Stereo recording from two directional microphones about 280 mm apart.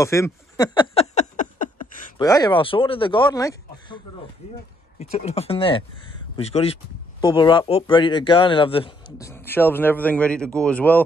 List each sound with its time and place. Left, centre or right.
0.0 s a sound: centre; by 1.9 s left
2.1 s speech: centre
9.3 s speech: centre